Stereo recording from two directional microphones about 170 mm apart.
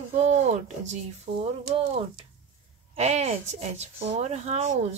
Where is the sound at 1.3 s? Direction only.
90° right.